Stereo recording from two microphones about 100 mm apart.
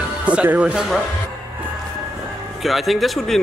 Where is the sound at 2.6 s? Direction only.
Centre (ahead or behind).